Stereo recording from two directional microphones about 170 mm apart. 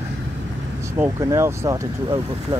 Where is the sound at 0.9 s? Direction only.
15° right (ahead or behind).